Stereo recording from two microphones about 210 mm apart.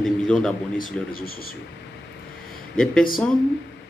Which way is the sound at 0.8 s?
45° left (ahead or behind).